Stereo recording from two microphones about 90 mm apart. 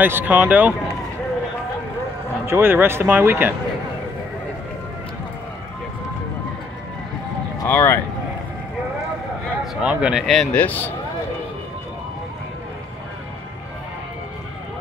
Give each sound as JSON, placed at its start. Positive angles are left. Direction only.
{"t": 0.0, "sound": "speech", "side_deg": -20}
{"t": 2.4, "sound": "speech", "side_deg": -25}
{"t": 7.5, "sound": "speech", "side_deg": 35}
{"t": 9.8, "sound": "speech", "side_deg": -15}
{"t": 10.2, "sound": "speech", "side_deg": 0}
{"t": 10.5, "sound": "a man's voice", "side_deg": 20}